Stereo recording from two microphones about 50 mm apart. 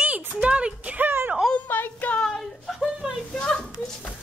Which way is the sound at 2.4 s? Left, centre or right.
Centre.